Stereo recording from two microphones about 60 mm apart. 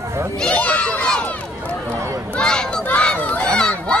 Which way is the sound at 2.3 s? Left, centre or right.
Centre.